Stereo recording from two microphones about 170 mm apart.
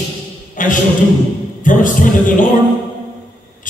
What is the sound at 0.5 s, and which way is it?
Speech, 50° left (ahead or behind).